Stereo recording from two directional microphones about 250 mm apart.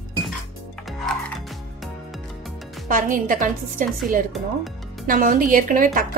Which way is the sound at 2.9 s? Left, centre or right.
Right.